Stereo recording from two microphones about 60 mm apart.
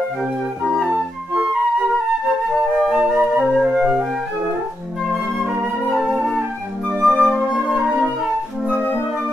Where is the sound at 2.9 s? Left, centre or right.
Centre.